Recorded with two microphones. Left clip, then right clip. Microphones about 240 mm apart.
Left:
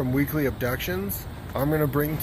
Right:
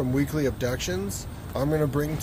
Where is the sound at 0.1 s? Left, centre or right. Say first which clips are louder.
Left 1 dB; centre.